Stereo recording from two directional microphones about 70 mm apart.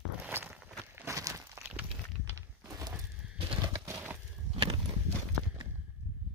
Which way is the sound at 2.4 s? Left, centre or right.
Right.